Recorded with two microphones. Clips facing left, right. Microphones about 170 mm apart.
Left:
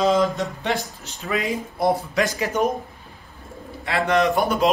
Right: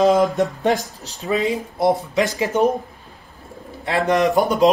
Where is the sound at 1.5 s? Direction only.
20° right (ahead or behind).